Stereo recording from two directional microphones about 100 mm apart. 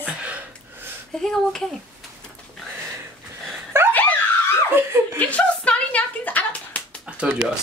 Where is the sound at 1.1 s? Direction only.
5° left (ahead or behind).